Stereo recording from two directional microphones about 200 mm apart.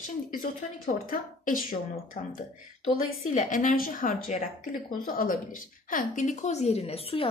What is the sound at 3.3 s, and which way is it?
A woman's voice, 40° left (ahead or behind).